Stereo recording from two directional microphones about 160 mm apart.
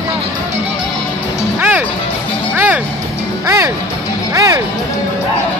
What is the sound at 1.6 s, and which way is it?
Music, 10° right (ahead or behind).